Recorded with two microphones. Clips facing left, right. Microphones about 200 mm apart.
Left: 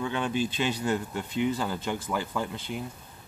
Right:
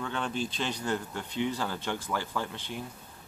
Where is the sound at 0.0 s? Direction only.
5° left (ahead or behind).